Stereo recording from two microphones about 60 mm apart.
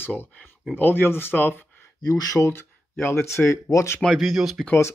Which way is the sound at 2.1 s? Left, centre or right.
Left.